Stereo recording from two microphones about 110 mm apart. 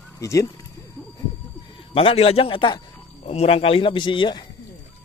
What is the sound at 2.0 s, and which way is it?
Speech, 60° left (ahead or behind).